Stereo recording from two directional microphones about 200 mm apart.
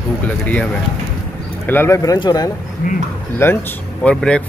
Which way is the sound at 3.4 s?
10° left (ahead or behind).